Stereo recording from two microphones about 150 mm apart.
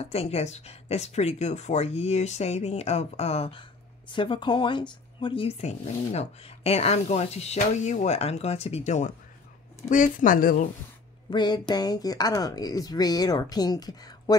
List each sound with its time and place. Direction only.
0.0 s speech: 45° left (ahead or behind)
9.8 s speech: 60° left (ahead or behind)
11.2 s speech: 30° left (ahead or behind)